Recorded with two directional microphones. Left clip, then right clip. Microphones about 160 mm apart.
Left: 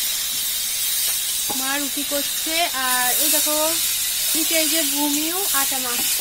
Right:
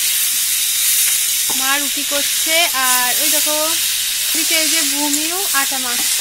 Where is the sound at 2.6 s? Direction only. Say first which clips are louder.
Right 4 dB; 30° right (ahead or behind).